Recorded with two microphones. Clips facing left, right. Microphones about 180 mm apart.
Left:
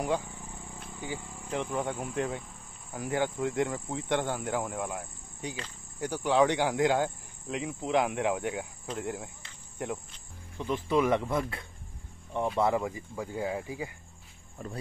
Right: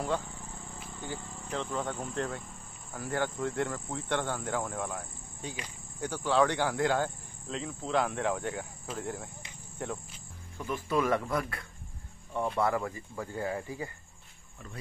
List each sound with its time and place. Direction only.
0.0 s insect: 15° left (ahead or behind)
0.9 s speech: 10° left (ahead or behind)